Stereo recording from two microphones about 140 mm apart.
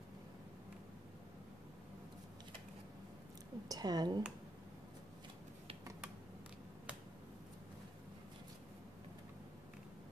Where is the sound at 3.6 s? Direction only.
25° right (ahead or behind).